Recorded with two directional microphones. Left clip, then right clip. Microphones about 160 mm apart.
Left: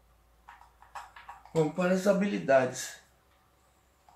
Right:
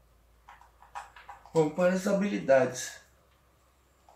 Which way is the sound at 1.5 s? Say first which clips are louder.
Right 2 dB; 15° left (ahead or behind).